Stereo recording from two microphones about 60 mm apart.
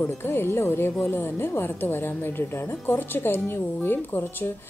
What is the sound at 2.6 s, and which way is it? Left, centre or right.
Speech, left.